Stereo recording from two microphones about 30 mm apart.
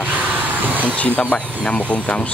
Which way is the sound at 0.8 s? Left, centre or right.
Left.